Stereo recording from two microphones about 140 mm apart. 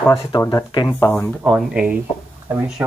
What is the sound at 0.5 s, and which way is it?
Speech, 30° left (ahead or behind).